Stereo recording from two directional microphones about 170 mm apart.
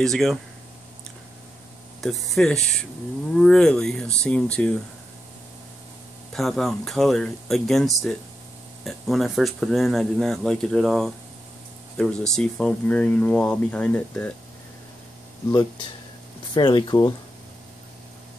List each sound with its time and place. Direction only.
0.0 s speech: centre (ahead or behind)
2.0 s speech: centre (ahead or behind)
6.3 s speech: centre (ahead or behind)
16.5 s speech: 25° left (ahead or behind)